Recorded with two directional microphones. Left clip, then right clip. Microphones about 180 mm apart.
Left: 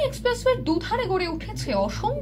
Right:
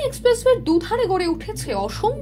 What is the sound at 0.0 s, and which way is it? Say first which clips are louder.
Speech: right 5 dB; 35° right (ahead or behind).